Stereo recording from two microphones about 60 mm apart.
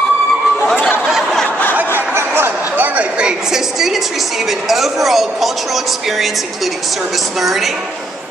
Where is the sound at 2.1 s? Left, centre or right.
Right; by 7.7 s centre.